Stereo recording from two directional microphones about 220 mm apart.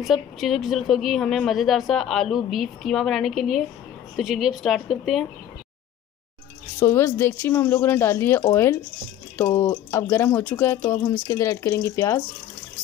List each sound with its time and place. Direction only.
0.0 s a woman's voice: centre (ahead or behind)
6.8 s speech: 10° left (ahead or behind)